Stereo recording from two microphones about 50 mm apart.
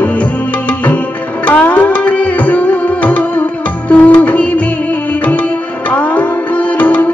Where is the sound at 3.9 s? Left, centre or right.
Left.